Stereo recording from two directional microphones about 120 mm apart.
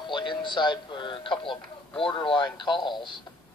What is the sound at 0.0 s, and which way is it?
Speech, 40° left (ahead or behind).